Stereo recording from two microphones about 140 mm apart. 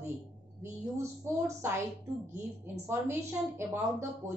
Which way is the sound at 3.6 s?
20° right (ahead or behind).